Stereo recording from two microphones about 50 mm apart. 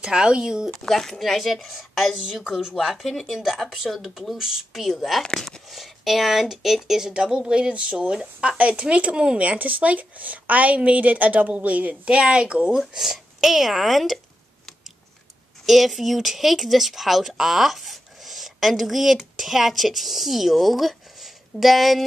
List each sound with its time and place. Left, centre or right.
0.0 s speech: centre
0.7 s speech: centre
5.7 s speech: centre; by 12.7 s right
12.7 s speech: centre
15.6 s speech: centre